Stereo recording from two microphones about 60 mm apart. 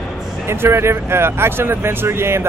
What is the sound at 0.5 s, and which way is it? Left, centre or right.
Speech, right.